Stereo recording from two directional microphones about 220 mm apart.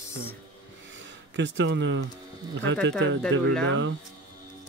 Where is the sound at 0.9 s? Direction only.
55° right (ahead or behind).